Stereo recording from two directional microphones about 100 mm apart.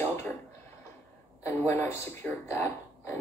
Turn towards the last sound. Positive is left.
turn(degrees=30)  # may be behind; listen again after turning